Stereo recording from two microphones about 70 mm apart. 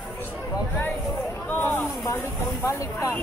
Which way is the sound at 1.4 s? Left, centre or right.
Left.